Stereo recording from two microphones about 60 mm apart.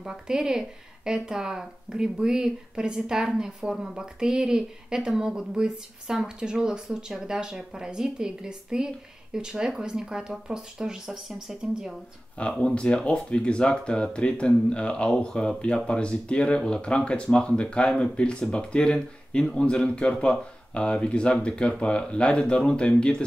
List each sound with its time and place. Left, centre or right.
0.0 s speech: centre
12.4 s speech: centre